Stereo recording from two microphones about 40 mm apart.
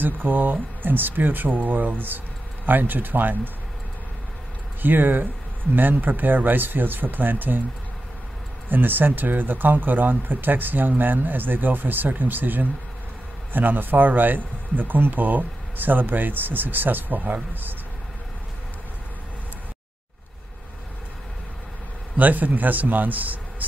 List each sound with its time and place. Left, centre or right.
0.0 s speech: right
4.8 s speech: right
8.6 s speech: right
22.1 s a man's voice: right